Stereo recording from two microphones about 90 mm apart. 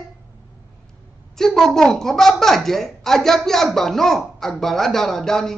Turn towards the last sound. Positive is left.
turn(degrees=5)  # may be behind; listen again after turning